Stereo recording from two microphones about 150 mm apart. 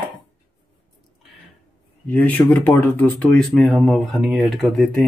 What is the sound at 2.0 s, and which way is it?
Speech, 10° left (ahead or behind).